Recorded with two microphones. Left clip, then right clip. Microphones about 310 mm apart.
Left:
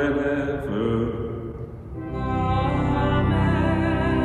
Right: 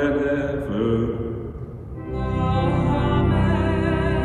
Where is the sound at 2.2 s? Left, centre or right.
Centre.